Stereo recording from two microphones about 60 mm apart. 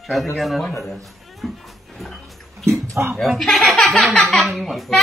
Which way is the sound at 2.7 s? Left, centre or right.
Right.